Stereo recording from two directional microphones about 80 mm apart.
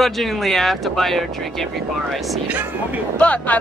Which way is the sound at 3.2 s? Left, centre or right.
Centre.